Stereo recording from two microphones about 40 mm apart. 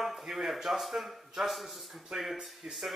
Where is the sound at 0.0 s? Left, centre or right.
Centre.